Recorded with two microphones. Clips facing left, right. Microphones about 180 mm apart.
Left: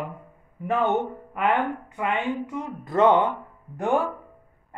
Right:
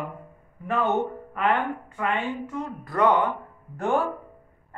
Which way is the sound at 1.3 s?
15° left (ahead or behind).